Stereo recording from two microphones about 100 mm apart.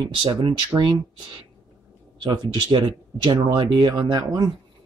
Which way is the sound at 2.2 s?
50° right (ahead or behind).